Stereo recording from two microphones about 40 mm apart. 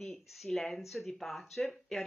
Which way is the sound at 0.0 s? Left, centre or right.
Centre.